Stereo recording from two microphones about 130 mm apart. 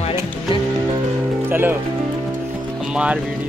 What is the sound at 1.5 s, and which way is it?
Music, 15° right (ahead or behind).